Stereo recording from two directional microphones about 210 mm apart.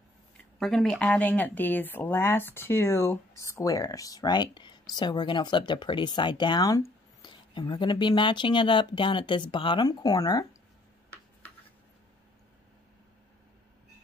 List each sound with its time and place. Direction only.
0.6 s speech: centre (ahead or behind); by 10.4 s 20° left (ahead or behind)